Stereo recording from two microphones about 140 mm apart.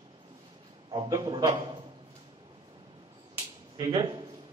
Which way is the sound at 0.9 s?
30° right (ahead or behind).